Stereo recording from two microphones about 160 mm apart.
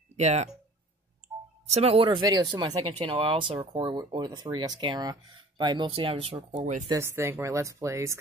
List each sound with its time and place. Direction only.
0.1 s speech: 45° right (ahead or behind)
1.7 s speech: 40° right (ahead or behind)
6.3 s speech: 50° right (ahead or behind)
6.9 s speech: 15° right (ahead or behind)